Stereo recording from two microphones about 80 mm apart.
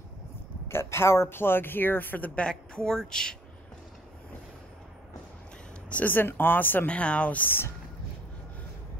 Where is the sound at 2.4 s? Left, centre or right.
Centre.